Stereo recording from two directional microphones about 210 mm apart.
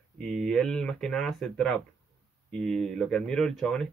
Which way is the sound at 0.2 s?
Centre (ahead or behind).